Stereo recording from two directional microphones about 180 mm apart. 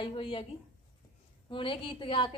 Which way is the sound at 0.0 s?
30° left (ahead or behind).